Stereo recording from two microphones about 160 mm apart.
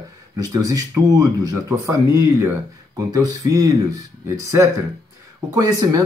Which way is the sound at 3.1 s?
20° right (ahead or behind).